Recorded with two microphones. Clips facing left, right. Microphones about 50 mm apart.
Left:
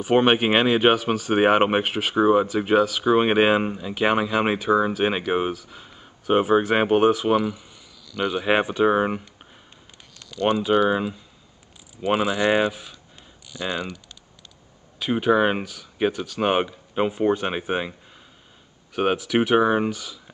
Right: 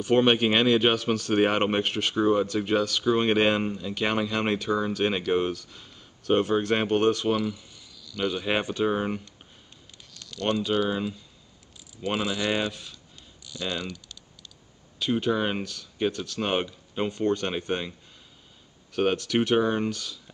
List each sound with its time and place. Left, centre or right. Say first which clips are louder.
0.0 s speech: left 3 dB; centre
10.1 s speech: left 5 dB; centre
15.6 s speech: left 4 dB; centre
18.9 s speech: left 3 dB; centre